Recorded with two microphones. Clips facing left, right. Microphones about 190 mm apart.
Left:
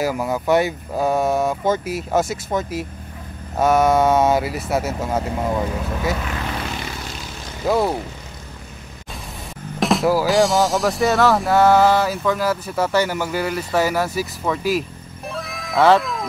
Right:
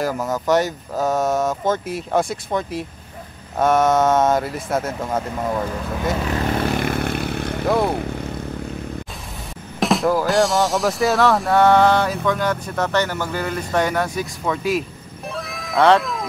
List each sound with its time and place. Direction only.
0.0 s speech: 10° left (ahead or behind)
6.3 s vehicle: 50° right (ahead or behind)
7.6 s speech: 5° left (ahead or behind)
9.8 s speech: centre (ahead or behind)
15.3 s music: centre (ahead or behind)